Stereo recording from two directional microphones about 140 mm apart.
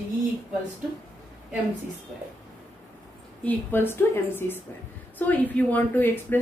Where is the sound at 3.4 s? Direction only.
15° left (ahead or behind).